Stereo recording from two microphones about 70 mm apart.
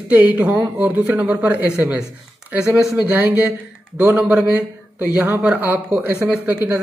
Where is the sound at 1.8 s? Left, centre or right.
Centre.